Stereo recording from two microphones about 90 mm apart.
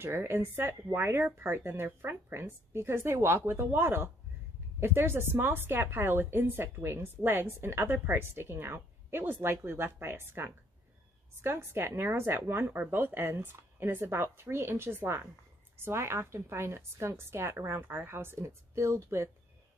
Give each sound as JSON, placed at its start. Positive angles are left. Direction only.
{"t": 0.0, "sound": "a woman's voice", "side_deg": -25}